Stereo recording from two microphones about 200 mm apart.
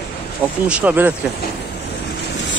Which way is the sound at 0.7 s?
5° right (ahead or behind).